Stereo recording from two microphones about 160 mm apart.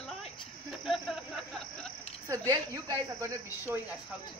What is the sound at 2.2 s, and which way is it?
Speech, 20° right (ahead or behind).